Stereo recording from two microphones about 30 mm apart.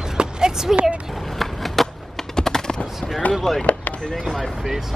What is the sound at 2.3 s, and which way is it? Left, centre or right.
Typing, left.